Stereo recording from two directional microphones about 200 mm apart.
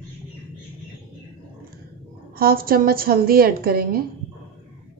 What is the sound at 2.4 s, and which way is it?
A woman's voice, 45° right (ahead or behind).